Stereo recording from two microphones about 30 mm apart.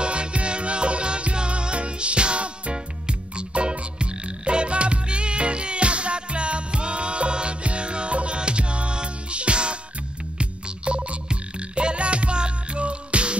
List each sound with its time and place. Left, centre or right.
0.0 s music: right
10.4 s frog: right